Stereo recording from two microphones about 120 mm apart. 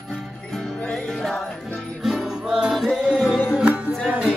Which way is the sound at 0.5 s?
Centre (ahead or behind).